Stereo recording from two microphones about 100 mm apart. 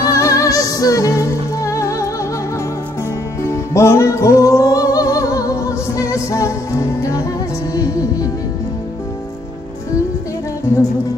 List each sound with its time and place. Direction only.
0.0 s music: 35° left (ahead or behind)
3.4 s music: 30° left (ahead or behind)